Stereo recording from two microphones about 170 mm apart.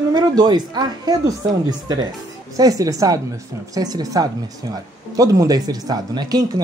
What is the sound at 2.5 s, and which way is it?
Speech, 20° right (ahead or behind).